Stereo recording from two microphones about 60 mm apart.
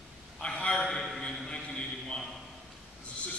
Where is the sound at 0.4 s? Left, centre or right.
Centre.